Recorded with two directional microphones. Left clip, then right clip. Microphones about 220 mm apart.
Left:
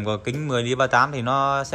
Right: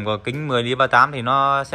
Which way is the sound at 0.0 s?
5° left (ahead or behind).